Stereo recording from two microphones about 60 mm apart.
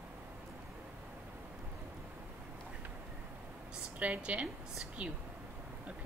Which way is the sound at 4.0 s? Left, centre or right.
Centre.